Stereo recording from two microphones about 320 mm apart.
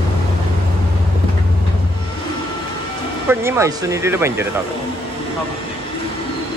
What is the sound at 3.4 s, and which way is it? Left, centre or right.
Speech, centre.